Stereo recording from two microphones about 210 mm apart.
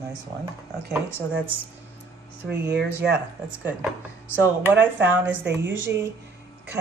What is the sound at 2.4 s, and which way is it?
Speech, 55° right (ahead or behind).